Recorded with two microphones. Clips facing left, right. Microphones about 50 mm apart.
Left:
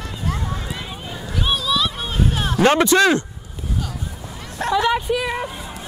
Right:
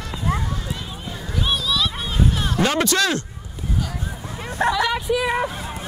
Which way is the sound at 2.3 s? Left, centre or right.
Left.